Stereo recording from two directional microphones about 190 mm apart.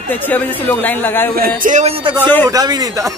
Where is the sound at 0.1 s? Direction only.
10° left (ahead or behind).